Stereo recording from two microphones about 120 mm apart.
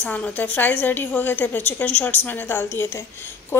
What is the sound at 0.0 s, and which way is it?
A woman's voice, 15° left (ahead or behind).